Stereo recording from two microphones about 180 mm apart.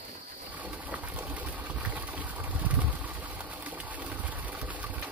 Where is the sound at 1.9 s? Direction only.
10° right (ahead or behind).